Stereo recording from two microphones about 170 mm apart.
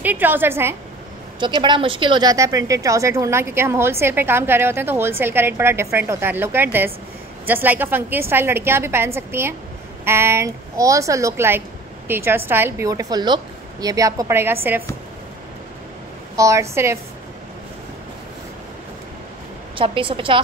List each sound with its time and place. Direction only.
0.0 s speech: 10° right (ahead or behind)
1.6 s speech: 30° right (ahead or behind); by 14.8 s 15° right (ahead or behind)
16.3 s speech: 15° right (ahead or behind)
19.8 s a woman's voice: 30° right (ahead or behind)